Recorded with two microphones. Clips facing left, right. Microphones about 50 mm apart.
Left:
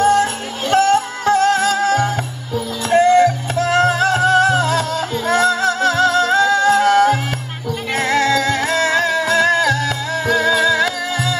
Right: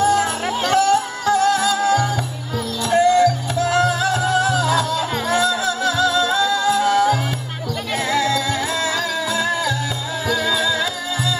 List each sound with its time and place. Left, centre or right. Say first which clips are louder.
0.0 s music: left 3 dB; left